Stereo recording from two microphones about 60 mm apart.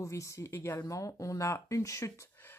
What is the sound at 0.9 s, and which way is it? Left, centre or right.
Speech, left.